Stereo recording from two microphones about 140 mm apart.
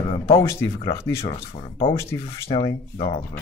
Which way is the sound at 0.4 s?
20° left (ahead or behind).